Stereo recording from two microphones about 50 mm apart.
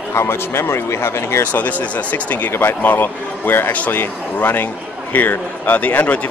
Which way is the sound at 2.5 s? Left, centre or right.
Left.